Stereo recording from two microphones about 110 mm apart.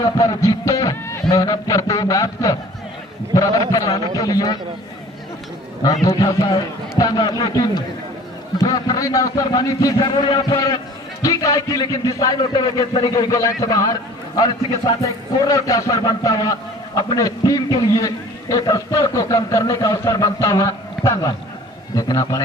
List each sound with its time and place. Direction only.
0.0 s a man's voice: 35° left (ahead or behind)
6.0 s a man's voice: 30° left (ahead or behind); by 10.6 s 45° left (ahead or behind)
11.2 s a man's voice: 35° left (ahead or behind)